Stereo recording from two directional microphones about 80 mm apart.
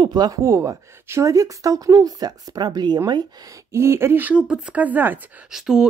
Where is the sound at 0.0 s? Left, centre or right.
Right.